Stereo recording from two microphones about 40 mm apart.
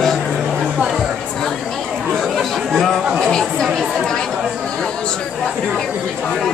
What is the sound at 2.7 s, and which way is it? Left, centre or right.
Chatter, centre.